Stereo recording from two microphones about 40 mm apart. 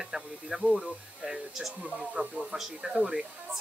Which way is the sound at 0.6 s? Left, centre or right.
Right.